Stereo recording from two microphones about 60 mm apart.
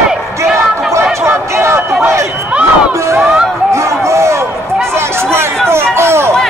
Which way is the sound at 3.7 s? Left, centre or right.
Right.